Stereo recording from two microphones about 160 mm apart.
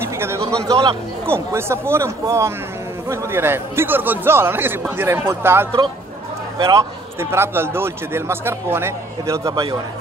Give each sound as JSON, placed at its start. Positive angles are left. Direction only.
{"t": 0.0, "sound": "a sound", "side_deg": -15}
{"t": 0.7, "sound": "a man's voice", "side_deg": -30}
{"t": 1.2, "sound": "a man's voice", "side_deg": -15}